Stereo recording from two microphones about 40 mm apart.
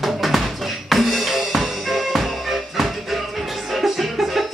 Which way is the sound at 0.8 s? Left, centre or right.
Centre.